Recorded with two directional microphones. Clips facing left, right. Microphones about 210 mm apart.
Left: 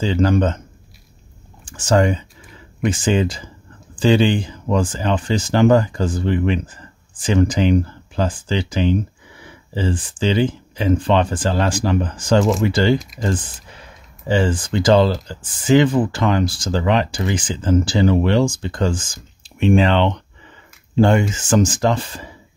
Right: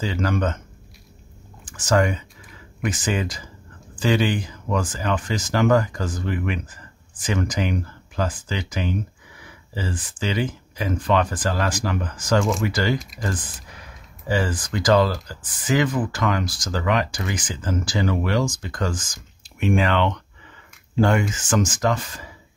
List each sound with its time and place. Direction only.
0.0 s speech: 30° left (ahead or behind)
1.6 s speech: 30° left (ahead or behind)